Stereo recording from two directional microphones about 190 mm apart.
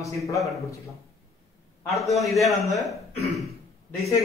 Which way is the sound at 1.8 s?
Centre (ahead or behind).